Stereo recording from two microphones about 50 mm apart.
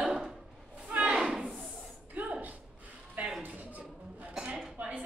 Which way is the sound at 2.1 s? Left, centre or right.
Right.